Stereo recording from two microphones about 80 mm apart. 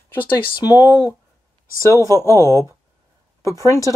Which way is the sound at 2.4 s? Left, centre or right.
Right.